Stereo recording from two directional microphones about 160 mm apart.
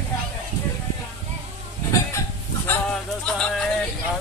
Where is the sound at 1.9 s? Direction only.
15° left (ahead or behind).